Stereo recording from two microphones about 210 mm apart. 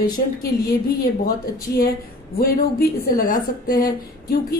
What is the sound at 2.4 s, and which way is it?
Speech, 45° left (ahead or behind).